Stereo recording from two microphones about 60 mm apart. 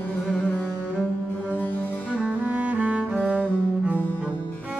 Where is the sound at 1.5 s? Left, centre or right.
Left.